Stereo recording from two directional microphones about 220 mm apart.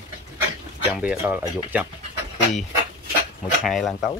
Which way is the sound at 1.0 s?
5° right (ahead or behind).